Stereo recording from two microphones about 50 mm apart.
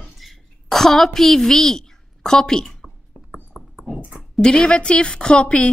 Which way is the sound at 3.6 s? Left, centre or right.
Centre.